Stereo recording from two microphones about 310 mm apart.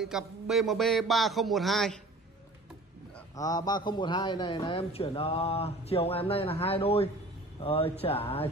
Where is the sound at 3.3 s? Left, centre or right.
Centre.